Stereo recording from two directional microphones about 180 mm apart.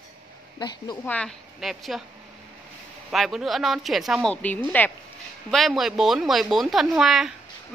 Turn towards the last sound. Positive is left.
turn(degrees=0)  # may be behind; listen again after turning